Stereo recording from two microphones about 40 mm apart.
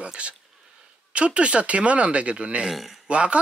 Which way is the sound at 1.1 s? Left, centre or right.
Right.